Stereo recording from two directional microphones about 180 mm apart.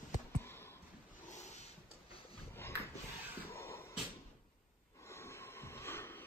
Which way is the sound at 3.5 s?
15° left (ahead or behind).